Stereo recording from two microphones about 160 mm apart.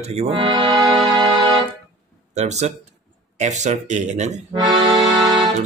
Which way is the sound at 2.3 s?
45° right (ahead or behind).